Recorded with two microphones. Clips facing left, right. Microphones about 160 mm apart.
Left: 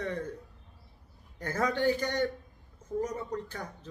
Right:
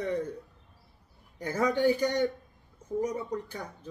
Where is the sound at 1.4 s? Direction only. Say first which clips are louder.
Right 3 dB; 10° right (ahead or behind).